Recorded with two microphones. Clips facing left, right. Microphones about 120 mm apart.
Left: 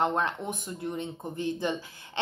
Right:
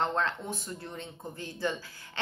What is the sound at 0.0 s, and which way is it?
Speech, 15° left (ahead or behind).